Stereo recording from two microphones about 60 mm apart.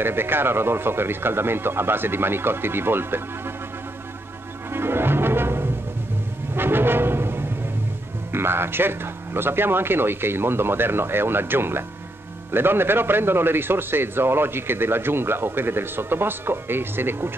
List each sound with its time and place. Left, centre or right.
0.0 s a man's voice: right
4.7 s brass instrument: right
6.5 s music: right
8.3 s a man's voice: right